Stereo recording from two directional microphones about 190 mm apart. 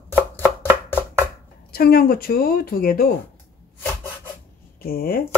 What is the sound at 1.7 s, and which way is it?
Speech, 50° left (ahead or behind).